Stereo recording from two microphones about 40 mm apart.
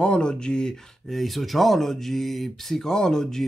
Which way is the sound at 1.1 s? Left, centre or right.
Centre.